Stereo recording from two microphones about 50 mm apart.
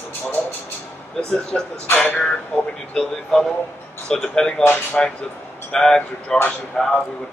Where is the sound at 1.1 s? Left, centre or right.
Centre.